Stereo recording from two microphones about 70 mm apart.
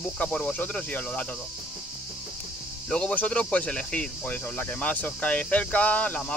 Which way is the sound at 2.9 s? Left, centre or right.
Centre.